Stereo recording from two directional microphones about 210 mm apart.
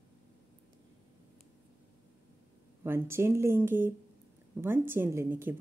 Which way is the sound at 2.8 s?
10° right (ahead or behind).